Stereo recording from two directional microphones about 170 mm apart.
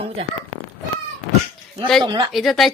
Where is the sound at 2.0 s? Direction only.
30° right (ahead or behind).